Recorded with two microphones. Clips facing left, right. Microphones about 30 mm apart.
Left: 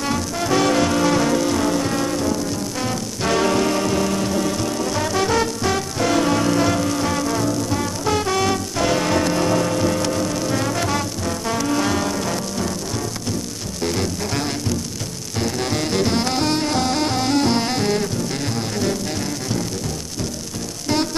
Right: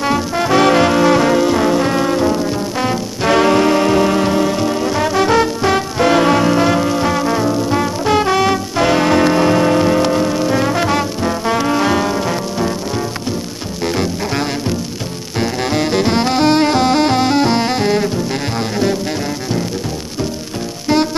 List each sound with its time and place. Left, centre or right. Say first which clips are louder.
0.0 s music: right 7 dB; right
15.4 s saxophone: right 5 dB; right